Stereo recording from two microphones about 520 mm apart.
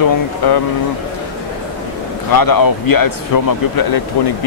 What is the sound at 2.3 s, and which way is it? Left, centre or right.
Speech, left.